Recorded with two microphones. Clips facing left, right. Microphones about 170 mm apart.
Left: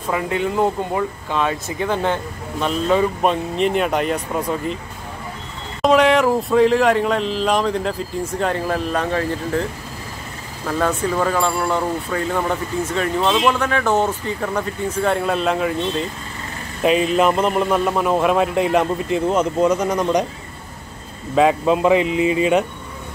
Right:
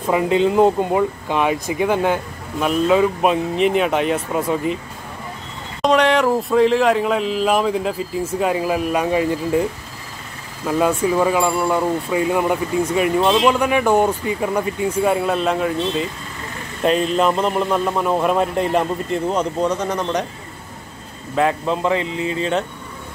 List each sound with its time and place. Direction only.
0.1 s speech: 20° right (ahead or behind); by 4.7 s 5° right (ahead or behind)
5.8 s speech: centre (ahead or behind)
10.7 s speech: 10° right (ahead or behind); by 20.2 s 15° left (ahead or behind)
21.4 s speech: 15° left (ahead or behind)